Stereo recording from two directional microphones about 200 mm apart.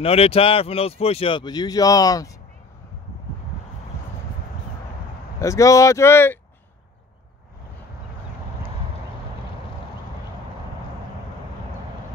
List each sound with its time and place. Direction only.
0.0 s speech: 30° left (ahead or behind)
5.4 s speech: 15° left (ahead or behind)